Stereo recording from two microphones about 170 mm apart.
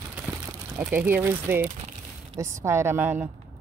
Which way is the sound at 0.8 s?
10° right (ahead or behind).